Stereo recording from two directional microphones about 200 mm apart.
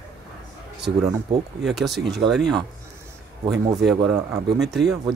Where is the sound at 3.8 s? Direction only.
Centre (ahead or behind).